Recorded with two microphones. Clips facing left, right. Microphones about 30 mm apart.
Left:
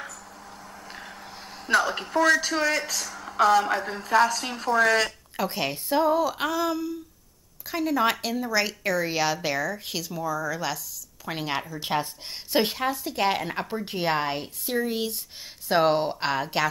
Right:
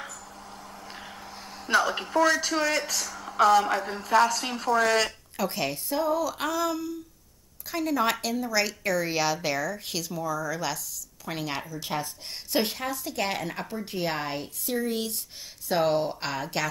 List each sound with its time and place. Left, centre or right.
0.5 s speech: centre
5.4 s speech: centre
6.3 s speech: centre
11.7 s speech: left
12.5 s speech: centre
15.7 s speech: left